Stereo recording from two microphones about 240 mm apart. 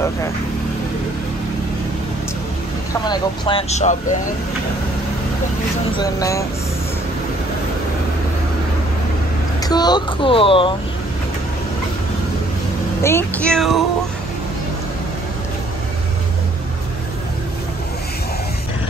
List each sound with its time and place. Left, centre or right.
2.9 s speech: centre
5.9 s speech: centre
9.6 s speech: centre
13.0 s speech: centre